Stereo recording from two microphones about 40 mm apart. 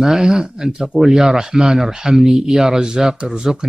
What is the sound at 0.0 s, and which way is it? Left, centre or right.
Speech, centre.